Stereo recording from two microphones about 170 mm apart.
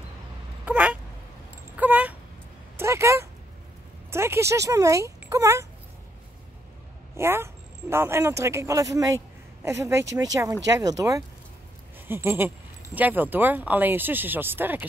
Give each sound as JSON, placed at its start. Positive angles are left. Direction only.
{"t": 0.7, "sound": "speech", "side_deg": -10}
{"t": 7.2, "sound": "speech", "side_deg": -15}